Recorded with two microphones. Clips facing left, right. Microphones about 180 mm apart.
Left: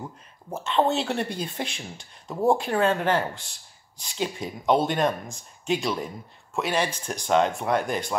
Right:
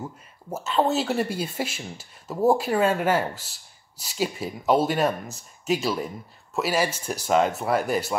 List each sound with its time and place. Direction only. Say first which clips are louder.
0.0 s speech: right 2 dB; 5° right (ahead or behind)